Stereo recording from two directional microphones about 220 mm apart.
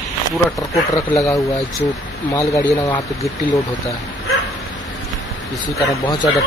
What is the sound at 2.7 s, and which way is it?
Speech, 30° left (ahead or behind).